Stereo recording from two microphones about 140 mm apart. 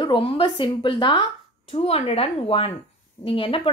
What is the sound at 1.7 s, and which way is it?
Speech, 45° left (ahead or behind).